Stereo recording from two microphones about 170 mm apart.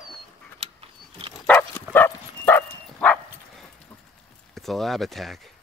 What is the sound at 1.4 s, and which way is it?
Bow-wow, 10° left (ahead or behind).